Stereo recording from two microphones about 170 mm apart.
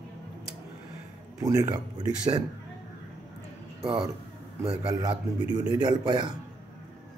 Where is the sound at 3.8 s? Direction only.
30° right (ahead or behind).